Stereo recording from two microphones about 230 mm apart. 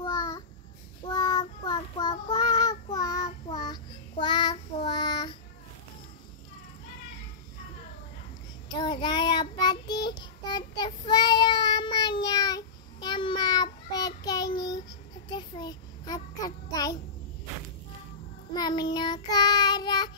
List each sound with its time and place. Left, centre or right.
0.0 s child singing: centre
8.6 s child singing: centre
18.5 s child singing: centre